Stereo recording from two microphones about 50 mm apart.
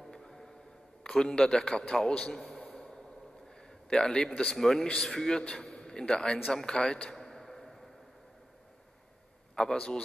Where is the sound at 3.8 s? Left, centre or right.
Centre.